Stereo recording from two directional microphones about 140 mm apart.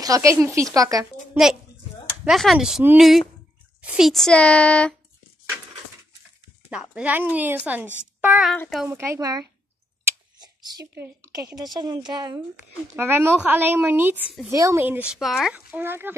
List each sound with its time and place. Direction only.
0.0 s speech: 25° right (ahead or behind)
2.2 s a child's voice: centre (ahead or behind)
6.7 s speech: 5° right (ahead or behind); by 9.5 s 25° right (ahead or behind)
10.4 s a sound: 30° right (ahead or behind)
11.5 s speech: 30° right (ahead or behind)
12.9 s speech: 15° right (ahead or behind)
15.1 s speech: centre (ahead or behind)